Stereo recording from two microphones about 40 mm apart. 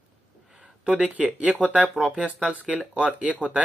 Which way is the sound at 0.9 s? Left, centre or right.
Right.